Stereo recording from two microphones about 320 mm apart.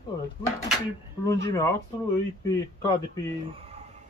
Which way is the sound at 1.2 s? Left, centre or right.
Centre.